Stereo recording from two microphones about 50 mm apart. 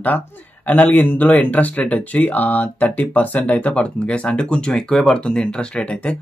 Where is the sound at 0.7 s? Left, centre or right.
Left.